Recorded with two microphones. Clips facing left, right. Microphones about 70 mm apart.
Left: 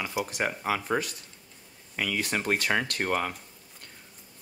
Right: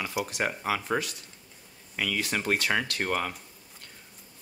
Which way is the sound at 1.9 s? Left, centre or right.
Centre.